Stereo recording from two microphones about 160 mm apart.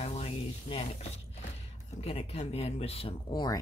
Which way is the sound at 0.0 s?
40° left (ahead or behind).